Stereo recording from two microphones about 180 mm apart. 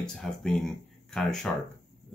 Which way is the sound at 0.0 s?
Centre (ahead or behind).